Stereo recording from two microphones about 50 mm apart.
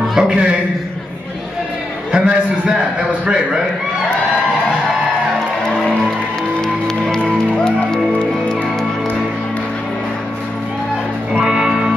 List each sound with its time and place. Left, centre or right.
0.0 s a sound: centre
2.1 s a man's voice: right
7.2 s music: centre
11.4 s music: centre